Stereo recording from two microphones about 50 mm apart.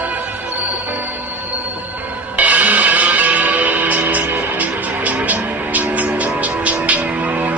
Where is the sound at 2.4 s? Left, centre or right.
Right.